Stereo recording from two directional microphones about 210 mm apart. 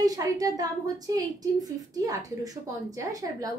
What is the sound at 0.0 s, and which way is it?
A woman's voice, 15° right (ahead or behind).